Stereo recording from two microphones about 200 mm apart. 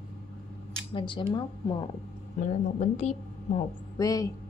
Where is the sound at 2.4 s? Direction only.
35° left (ahead or behind).